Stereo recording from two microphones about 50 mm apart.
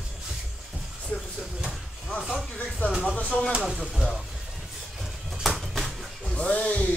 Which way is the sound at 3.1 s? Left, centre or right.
Left.